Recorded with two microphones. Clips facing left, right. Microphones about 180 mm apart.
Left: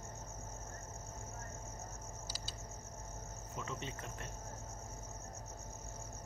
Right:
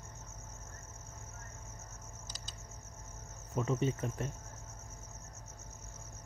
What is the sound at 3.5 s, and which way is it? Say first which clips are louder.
Cricket: right 12 dB; 45° right (ahead or behind).